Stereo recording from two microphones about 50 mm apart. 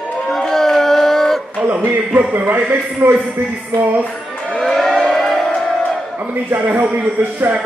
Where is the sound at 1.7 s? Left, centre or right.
Right.